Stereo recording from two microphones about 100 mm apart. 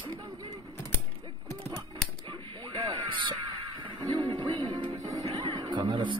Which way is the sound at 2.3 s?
55° right (ahead or behind).